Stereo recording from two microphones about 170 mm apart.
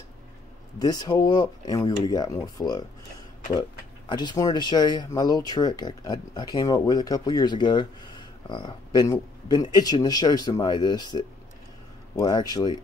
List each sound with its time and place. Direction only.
0.7 s speech: 25° left (ahead or behind)
4.1 s speech: 25° left (ahead or behind)